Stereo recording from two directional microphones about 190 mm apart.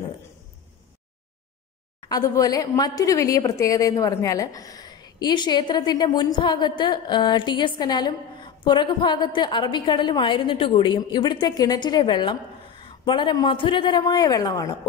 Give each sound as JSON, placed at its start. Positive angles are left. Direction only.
{"t": 2.0, "sound": "a woman's voice", "side_deg": 20}